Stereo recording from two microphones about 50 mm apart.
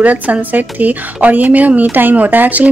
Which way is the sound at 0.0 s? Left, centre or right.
Right.